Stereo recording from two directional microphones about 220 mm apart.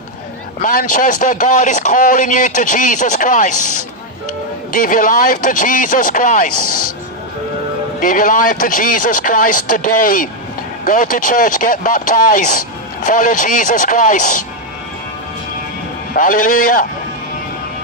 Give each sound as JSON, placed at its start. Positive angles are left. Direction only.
{"t": 0.6, "sound": "speech", "side_deg": 40}
{"t": 4.7, "sound": "speech", "side_deg": 40}
{"t": 8.0, "sound": "speech", "side_deg": 40}
{"t": 16.1, "sound": "speech", "side_deg": 40}